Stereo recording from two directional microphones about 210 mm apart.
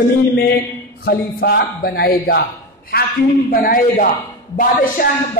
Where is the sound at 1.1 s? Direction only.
45° left (ahead or behind).